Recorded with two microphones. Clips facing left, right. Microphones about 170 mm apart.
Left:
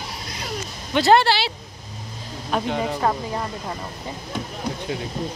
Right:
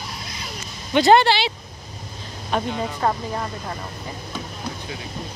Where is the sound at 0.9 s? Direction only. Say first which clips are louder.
Right 2 dB; centre (ahead or behind).